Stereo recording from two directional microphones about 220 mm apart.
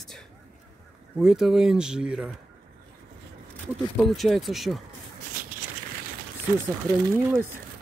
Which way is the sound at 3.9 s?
Centre (ahead or behind).